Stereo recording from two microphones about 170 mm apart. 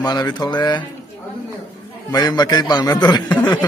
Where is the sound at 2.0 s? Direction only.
25° left (ahead or behind).